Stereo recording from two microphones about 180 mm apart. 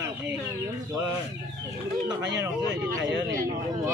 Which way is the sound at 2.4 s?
20° right (ahead or behind).